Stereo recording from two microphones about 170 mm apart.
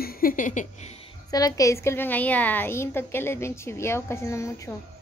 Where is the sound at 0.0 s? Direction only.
60° left (ahead or behind).